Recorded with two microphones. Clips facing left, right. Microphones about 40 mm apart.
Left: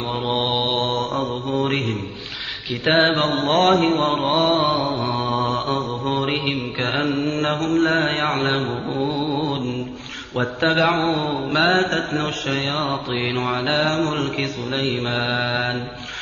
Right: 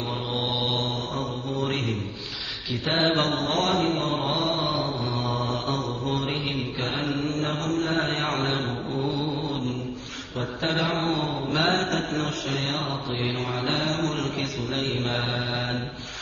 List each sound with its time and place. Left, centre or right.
0.3 s mantra: left
2.8 s mantra: left
3.2 s mantra: left
8.0 s mantra: left
8.5 s mantra: left
14.0 s mantra: left